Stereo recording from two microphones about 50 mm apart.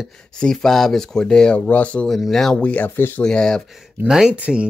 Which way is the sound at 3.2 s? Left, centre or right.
Centre.